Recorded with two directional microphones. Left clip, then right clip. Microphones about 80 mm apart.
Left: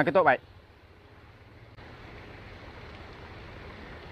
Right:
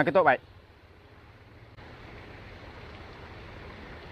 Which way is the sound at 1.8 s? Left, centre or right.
Left.